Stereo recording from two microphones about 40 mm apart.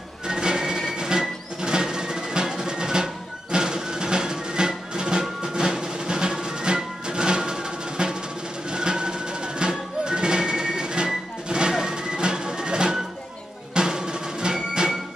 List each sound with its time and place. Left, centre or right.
0.3 s music: centre
8.6 s a sound: right
9.6 s music: right